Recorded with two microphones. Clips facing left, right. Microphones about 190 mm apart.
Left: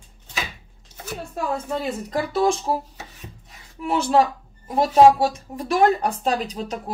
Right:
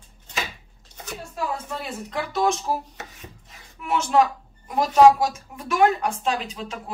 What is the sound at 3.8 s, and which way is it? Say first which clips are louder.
A woman's voice: left 1 dB; 35° left (ahead or behind).